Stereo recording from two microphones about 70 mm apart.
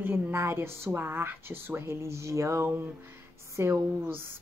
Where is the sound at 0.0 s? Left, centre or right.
Right.